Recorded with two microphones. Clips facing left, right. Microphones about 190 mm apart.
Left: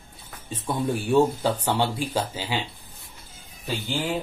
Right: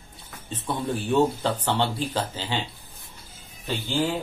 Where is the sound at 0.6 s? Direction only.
10° left (ahead or behind).